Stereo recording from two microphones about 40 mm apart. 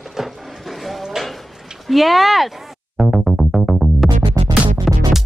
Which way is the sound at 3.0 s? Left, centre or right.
Centre.